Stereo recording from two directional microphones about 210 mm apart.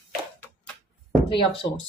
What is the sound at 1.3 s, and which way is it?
Speech, 25° left (ahead or behind).